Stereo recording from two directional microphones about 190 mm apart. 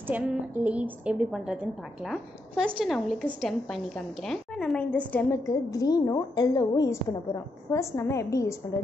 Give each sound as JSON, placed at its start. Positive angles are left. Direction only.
{"t": 0.1, "sound": "a woman's voice", "side_deg": -5}